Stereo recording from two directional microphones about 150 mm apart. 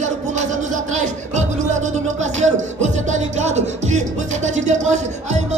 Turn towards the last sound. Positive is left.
turn(degrees=-50)  # may be behind; listen again after turning